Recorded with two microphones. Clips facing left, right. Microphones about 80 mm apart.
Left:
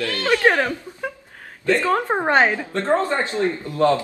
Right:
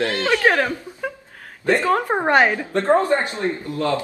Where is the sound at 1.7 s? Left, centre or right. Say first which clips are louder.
Right 1 dB; centre.